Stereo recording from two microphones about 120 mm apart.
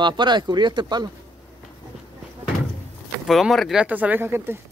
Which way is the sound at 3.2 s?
Centre (ahead or behind).